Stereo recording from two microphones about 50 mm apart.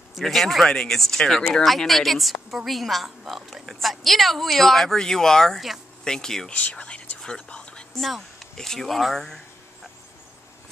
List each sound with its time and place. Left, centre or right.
0.1 s speech: centre
6.5 s speech: left
7.2 s whispering: centre
7.4 s a sound: centre
8.0 s speech: centre